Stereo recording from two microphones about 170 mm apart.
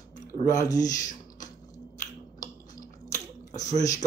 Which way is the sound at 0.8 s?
20° left (ahead or behind).